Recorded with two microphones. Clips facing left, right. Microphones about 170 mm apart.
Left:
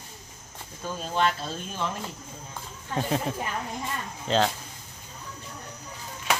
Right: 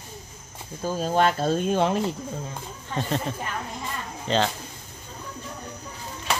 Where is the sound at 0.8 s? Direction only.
45° right (ahead or behind); by 2.0 s 65° right (ahead or behind).